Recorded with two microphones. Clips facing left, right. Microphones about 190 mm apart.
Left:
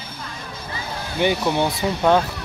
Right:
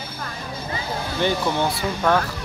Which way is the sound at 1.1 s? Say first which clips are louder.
Left 3 dB; 15° left (ahead or behind).